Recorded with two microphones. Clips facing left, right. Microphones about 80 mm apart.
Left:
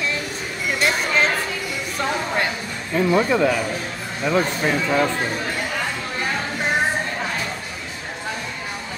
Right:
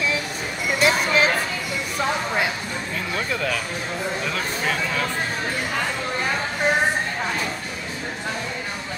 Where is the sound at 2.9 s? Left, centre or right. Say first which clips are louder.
Left 11 dB; left.